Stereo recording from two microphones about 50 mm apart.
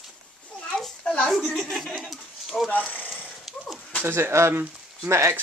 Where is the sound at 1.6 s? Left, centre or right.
Centre.